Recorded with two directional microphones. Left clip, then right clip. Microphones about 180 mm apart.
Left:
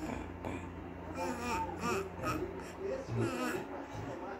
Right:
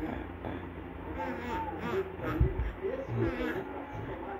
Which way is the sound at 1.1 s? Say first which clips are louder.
Right 1 dB; 20° left (ahead or behind).